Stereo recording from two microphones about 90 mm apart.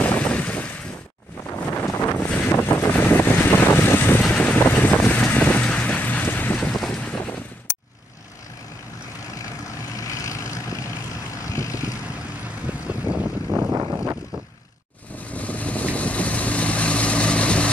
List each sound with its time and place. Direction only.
0.0 s boat: 15° left (ahead or behind)
1.5 s wind noise: 30° left (ahead or behind)
2.2 s vehicle: 15° left (ahead or behind)
2.5 s vehicle: 25° left (ahead or behind)
6.7 s boat: 5° left (ahead or behind)
9.9 s vehicle: 35° left (ahead or behind)
12.6 s vehicle: 15° right (ahead or behind)
13.5 s vehicle: 30° right (ahead or behind)
15.3 s vehicle: 15° left (ahead or behind)